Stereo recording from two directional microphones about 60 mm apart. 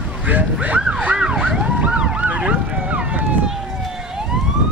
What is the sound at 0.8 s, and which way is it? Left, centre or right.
Emergency vehicle, centre.